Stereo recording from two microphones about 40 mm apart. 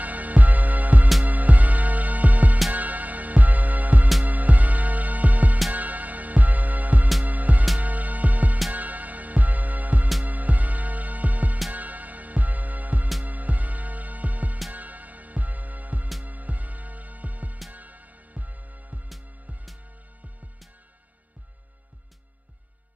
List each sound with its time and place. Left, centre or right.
0.0 s music: right
19.0 s music: centre